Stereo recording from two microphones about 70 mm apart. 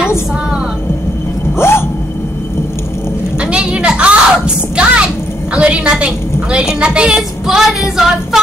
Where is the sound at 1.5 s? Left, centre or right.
Left.